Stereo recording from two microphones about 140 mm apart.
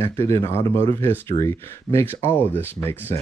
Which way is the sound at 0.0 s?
20° left (ahead or behind).